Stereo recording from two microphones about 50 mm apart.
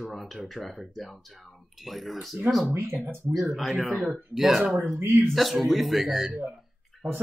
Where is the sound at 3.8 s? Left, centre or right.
Right.